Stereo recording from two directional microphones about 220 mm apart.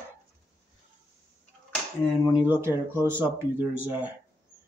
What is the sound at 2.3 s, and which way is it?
Speech, 10° right (ahead or behind).